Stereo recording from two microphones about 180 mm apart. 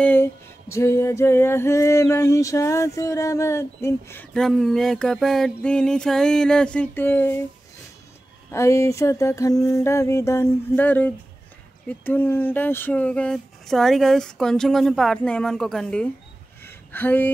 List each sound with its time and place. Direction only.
0.0 s female singing: 10° left (ahead or behind)
8.5 s female singing: 15° left (ahead or behind)
11.9 s speech: 10° left (ahead or behind)
16.6 s a sound: 10° left (ahead or behind)